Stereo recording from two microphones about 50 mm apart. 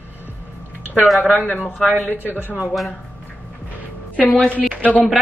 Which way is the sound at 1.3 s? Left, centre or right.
Left.